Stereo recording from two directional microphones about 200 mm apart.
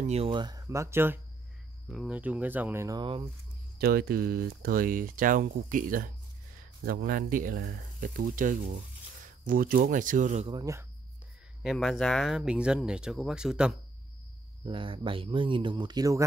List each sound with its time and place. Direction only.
0.0 s speech: 30° right (ahead or behind)
3.7 s speech: 50° right (ahead or behind)
10.5 s speech: 15° right (ahead or behind)
11.6 s speech: centre (ahead or behind)
14.6 s speech: 25° right (ahead or behind)